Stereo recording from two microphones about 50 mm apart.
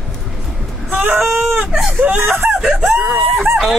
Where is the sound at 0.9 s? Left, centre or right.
Right.